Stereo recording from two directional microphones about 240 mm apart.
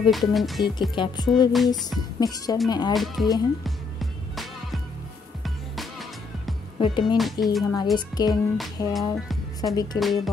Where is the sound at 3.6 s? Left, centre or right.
Centre.